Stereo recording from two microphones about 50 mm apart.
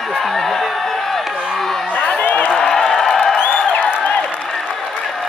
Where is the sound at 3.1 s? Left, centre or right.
Centre.